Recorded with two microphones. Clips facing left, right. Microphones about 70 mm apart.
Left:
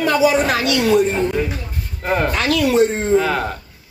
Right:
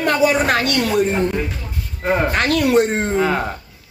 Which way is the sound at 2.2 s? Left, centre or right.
Right.